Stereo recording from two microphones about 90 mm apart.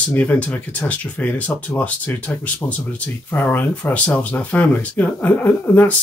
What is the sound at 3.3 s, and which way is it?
Speech, 20° left (ahead or behind).